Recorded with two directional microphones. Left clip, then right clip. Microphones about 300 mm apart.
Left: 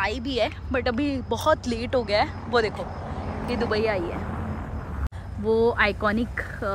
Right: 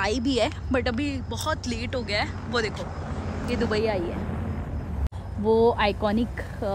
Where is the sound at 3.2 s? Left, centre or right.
Left.